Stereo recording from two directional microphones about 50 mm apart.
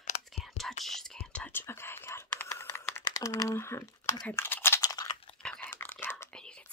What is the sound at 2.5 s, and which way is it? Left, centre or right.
Computer keyboard, left.